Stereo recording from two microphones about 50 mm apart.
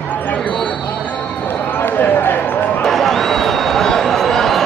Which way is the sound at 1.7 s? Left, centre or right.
Left.